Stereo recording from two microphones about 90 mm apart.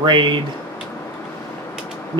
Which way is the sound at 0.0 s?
60° right (ahead or behind).